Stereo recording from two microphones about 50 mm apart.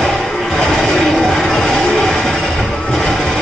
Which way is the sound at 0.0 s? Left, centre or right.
Centre.